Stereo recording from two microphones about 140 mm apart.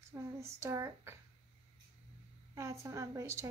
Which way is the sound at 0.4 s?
20° right (ahead or behind).